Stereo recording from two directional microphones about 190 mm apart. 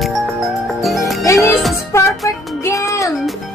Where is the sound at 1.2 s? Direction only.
15° left (ahead or behind).